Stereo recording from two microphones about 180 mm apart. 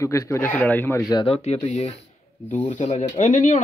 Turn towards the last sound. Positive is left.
turn(degrees=40)  # may be behind; listen again after turning